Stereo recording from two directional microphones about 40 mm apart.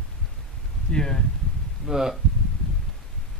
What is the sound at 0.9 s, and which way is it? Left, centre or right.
Speech, centre.